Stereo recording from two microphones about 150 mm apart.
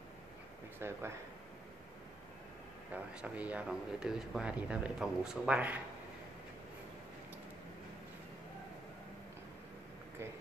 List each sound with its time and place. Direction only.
0.7 s speech: 15° right (ahead or behind)
2.9 s speech: 10° right (ahead or behind)